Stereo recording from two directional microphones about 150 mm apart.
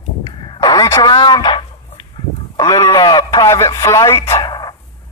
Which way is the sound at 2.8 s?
25° left (ahead or behind).